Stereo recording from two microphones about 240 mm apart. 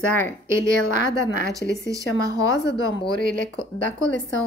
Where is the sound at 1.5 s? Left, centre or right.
Centre.